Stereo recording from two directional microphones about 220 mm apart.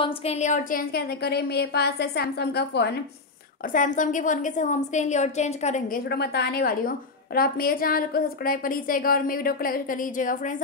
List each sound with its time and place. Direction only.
0.0 s a woman's voice: 30° left (ahead or behind); by 3.0 s 50° left (ahead or behind)
3.7 s a woman's voice: 35° left (ahead or behind)
6.0 s a woman's voice: 45° left (ahead or behind)